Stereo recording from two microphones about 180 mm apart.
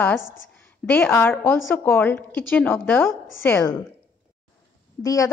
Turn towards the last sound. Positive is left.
turn(degrees=20)  # may be behind; listen again after turning